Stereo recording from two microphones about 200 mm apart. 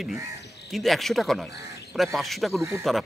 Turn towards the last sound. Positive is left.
turn(degrees=0)  # may be behind; listen again after turning